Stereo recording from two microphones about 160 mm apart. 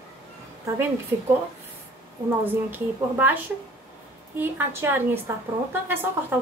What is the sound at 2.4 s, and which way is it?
Speech, 10° right (ahead or behind).